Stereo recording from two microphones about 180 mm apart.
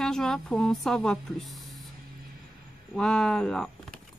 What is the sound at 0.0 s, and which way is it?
A woman's voice, 5° left (ahead or behind).